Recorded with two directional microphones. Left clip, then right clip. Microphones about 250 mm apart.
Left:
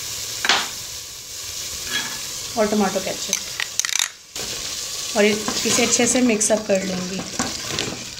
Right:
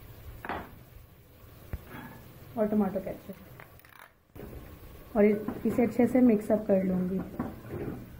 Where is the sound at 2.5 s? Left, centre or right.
Left.